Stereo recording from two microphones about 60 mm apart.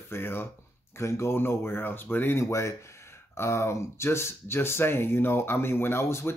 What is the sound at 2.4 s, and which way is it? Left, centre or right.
Speech, left.